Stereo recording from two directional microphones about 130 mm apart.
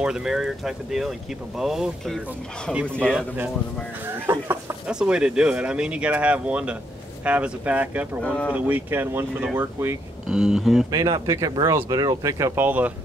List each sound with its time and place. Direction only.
0.0 s speech: 5° right (ahead or behind)
4.1 s speech: 20° right (ahead or behind)
4.8 s speech: 5° right (ahead or behind)
10.2 s speech: 5° right (ahead or behind)
10.9 s speech: 25° right (ahead or behind)